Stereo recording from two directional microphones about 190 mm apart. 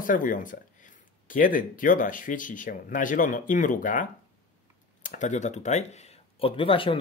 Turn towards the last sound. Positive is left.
turn(degrees=30)  # may be behind; listen again after turning